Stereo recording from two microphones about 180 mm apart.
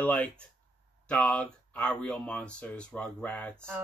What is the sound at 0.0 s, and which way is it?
Speech, 10° left (ahead or behind).